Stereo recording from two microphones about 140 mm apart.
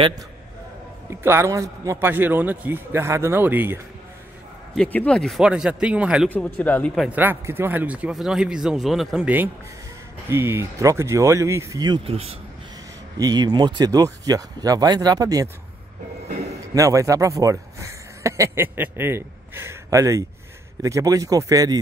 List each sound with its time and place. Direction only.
1.2 s a man's voice: 20° right (ahead or behind)
4.7 s speech: 10° left (ahead or behind); by 6.2 s 5° right (ahead or behind)
6.3 s speech: 10° left (ahead or behind)
7.1 s a man's voice: 15° right (ahead or behind)
12.0 s speech: 45° right (ahead or behind)
13.2 s speech: 30° right (ahead or behind)
16.7 s speech: 25° right (ahead or behind)